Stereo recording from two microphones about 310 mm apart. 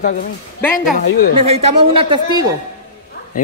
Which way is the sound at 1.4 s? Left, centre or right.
Centre.